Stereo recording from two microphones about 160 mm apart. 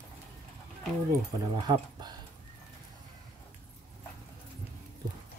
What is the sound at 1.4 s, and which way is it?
Speech, 25° right (ahead or behind).